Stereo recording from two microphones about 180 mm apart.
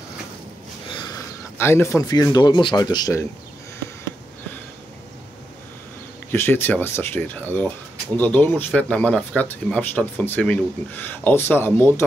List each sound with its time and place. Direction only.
0.8 s speech: 25° left (ahead or behind)
6.3 s speech: 10° left (ahead or behind)